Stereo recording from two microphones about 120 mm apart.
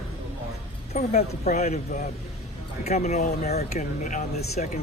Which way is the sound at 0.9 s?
70° left (ahead or behind).